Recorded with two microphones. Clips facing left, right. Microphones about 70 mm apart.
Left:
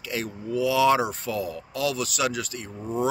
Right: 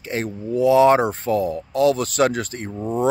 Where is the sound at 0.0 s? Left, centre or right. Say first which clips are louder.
Right 5 dB; right.